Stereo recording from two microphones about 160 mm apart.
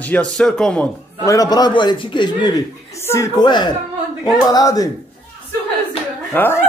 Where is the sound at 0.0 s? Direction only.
10° left (ahead or behind).